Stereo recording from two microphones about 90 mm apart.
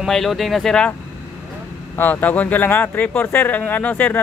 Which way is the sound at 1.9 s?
20° left (ahead or behind).